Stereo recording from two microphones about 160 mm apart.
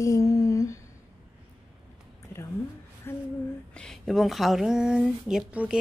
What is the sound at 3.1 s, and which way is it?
Speech, 15° left (ahead or behind).